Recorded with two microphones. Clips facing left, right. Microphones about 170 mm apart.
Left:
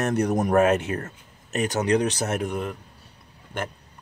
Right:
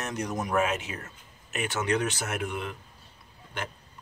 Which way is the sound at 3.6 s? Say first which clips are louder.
Left 6 dB; 50° left (ahead or behind).